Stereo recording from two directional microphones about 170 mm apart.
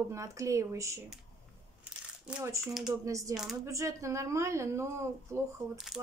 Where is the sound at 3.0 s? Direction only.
20° right (ahead or behind).